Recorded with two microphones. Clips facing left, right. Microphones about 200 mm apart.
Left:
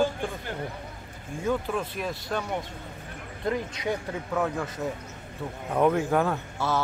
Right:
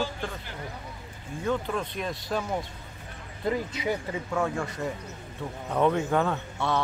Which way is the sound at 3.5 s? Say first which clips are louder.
Even; 5° right (ahead or behind).